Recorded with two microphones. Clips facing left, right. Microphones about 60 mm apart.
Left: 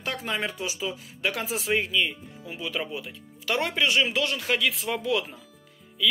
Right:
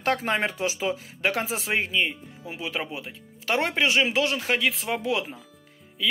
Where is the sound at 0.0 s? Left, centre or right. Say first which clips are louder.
Right 5 dB; right.